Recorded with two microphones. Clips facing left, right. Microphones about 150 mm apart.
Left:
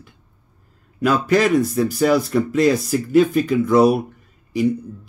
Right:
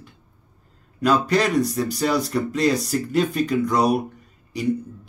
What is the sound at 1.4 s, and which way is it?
Speech, 5° left (ahead or behind).